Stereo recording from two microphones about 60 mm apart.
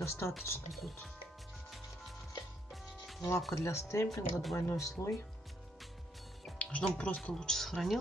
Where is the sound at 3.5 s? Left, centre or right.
Left.